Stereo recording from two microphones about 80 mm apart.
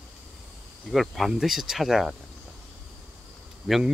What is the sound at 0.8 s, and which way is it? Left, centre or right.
Speech, centre.